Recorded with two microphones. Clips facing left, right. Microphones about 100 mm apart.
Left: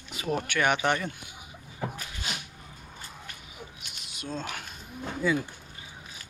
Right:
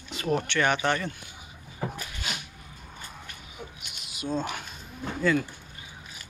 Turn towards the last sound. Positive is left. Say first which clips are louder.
# right 2 dB
turn(degrees=10)  # may be behind; listen again after turning